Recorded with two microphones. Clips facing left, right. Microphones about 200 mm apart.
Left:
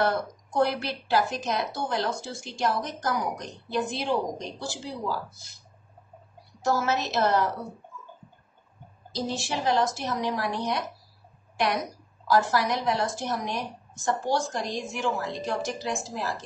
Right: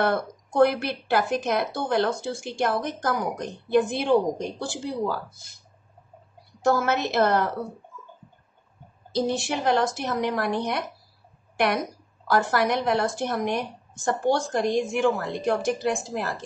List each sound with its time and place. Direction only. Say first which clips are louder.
0.0 s speech: right 2 dB; 55° right (ahead or behind)
6.6 s speech: right 3 dB; 55° right (ahead or behind)
9.1 s speech: right 5 dB; 55° right (ahead or behind)